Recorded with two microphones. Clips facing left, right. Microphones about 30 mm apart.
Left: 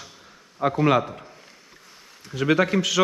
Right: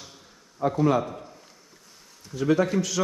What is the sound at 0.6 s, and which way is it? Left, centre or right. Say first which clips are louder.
Speech: left 2 dB; left.